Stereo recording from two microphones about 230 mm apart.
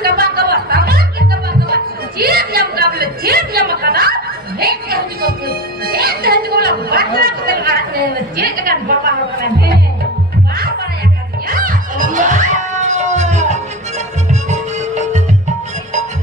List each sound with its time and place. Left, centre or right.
0.0 s music: right
5.9 s chatter: right
11.4 s music: right